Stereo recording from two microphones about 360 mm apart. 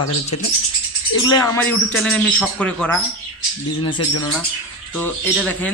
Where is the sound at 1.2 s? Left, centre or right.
Centre.